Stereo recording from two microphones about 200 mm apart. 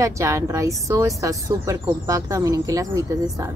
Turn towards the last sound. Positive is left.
turn(degrees=-15)  # may be behind; listen again after turning